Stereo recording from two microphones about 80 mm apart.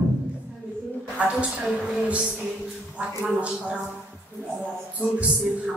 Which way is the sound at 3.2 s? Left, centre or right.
Centre.